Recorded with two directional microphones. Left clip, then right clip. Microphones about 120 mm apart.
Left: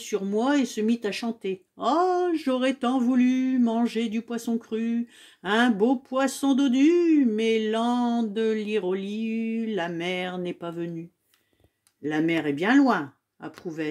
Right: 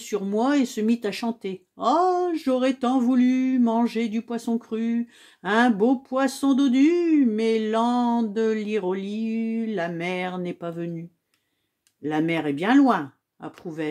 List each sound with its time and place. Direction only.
0.1 s speech: 30° right (ahead or behind)
12.0 s speech: 20° right (ahead or behind)